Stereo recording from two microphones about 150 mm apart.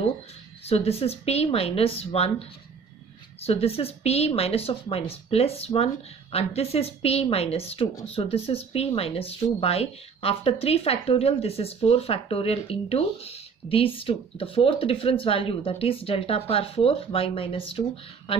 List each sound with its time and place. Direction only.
0.7 s speech: 40° left (ahead or behind)